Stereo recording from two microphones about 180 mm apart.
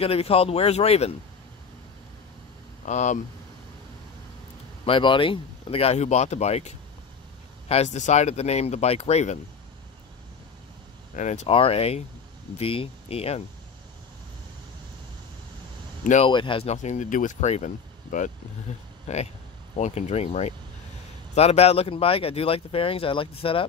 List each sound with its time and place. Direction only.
0.0 s speech: 35° left (ahead or behind)
2.8 s speech: 40° left (ahead or behind)
4.8 s speech: 30° left (ahead or behind)
11.1 s speech: 35° left (ahead or behind)
16.0 s speech: 45° left (ahead or behind)
16.3 s speech: 25° left (ahead or behind)